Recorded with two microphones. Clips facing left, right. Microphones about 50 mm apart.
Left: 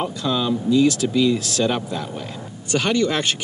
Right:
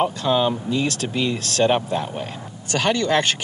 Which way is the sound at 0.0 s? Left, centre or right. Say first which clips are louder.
Right 3 dB; right.